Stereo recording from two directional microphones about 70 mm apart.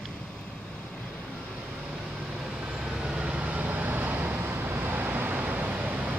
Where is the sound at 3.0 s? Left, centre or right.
Centre.